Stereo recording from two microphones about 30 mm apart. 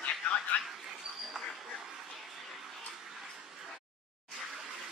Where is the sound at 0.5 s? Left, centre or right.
Left.